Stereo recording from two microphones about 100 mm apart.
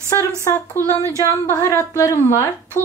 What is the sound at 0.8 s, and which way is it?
Speech, 30° right (ahead or behind).